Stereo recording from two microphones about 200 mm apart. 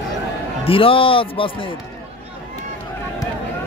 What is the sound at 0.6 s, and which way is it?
Speech, 25° left (ahead or behind).